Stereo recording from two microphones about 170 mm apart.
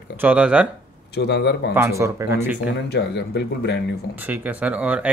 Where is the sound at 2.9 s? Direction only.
80° left.